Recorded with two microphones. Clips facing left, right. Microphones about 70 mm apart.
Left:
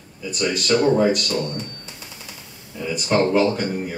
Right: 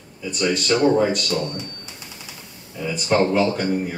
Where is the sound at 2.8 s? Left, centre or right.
Centre.